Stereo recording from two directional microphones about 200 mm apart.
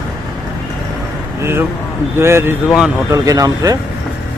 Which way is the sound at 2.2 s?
15° right (ahead or behind).